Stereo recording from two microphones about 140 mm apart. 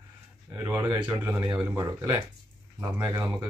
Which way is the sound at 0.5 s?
15° right (ahead or behind).